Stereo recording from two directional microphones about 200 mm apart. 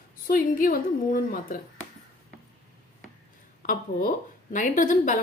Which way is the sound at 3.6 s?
40° left (ahead or behind).